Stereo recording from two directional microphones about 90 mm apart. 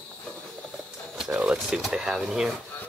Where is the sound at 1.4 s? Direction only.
5° right (ahead or behind).